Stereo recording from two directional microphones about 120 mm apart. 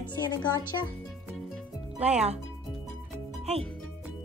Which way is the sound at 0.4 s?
35° left (ahead or behind).